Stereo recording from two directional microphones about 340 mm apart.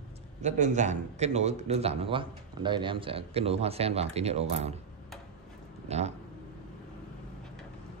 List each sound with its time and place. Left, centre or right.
0.4 s a man's voice: right
5.9 s speech: centre